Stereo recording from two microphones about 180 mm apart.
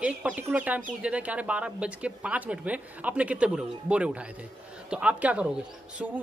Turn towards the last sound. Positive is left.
turn(degrees=-5)  # may be behind; listen again after turning